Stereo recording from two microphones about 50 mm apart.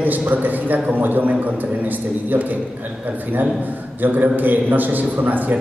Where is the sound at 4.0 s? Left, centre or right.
Right.